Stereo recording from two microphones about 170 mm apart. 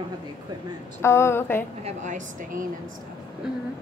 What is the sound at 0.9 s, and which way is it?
Speech, 15° left (ahead or behind).